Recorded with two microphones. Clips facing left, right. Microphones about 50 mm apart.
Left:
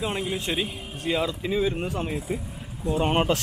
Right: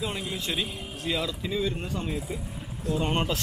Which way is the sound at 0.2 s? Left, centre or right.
Centre.